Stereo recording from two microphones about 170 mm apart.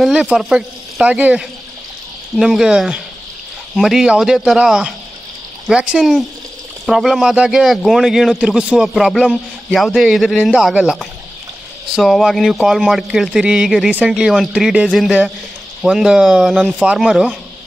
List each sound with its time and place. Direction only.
0.0 s a man's voice: centre (ahead or behind)